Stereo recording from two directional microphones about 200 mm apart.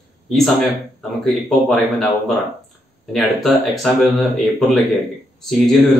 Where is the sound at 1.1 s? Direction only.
Centre (ahead or behind).